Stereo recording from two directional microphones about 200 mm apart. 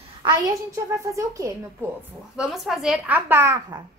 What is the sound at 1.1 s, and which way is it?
Speech, 15° right (ahead or behind).